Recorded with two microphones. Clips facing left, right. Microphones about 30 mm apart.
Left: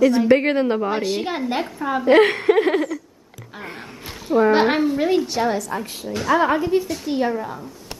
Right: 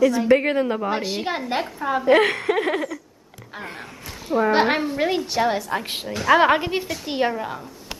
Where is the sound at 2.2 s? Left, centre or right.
Centre.